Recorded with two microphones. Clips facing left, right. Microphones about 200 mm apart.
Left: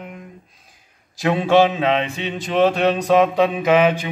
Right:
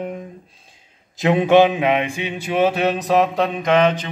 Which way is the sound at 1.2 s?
20° right (ahead or behind).